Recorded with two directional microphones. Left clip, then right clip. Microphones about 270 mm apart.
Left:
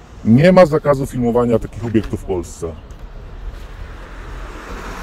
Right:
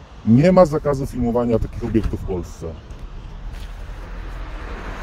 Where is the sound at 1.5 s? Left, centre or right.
Centre.